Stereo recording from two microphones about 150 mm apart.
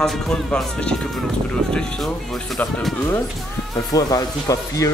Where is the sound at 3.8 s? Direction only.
25° left (ahead or behind).